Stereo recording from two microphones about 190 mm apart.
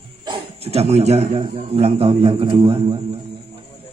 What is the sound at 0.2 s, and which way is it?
A man's voice, 30° right (ahead or behind).